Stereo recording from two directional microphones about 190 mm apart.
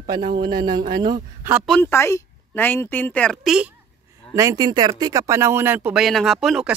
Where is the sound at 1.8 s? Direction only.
15° left (ahead or behind).